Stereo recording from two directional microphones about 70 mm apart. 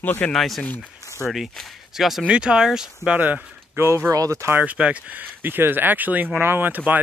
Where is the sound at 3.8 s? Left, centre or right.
Right.